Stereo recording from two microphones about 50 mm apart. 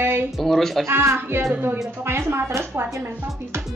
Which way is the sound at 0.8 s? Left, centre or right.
Right.